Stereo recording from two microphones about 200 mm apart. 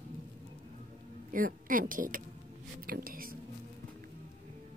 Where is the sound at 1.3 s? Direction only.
45° right (ahead or behind).